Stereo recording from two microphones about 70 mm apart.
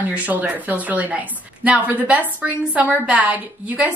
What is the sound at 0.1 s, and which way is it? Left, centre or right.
A woman's voice, right.